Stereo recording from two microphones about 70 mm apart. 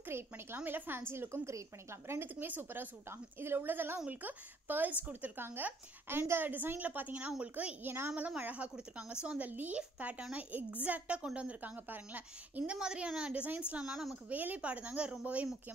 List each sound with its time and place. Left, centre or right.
0.1 s a woman's voice: right
2.3 s a woman's voice: right
5.4 s a woman's voice: right; by 7.7 s centre
7.8 s a woman's voice: right
8.4 s a woman's voice: right
12.7 s a woman's voice: centre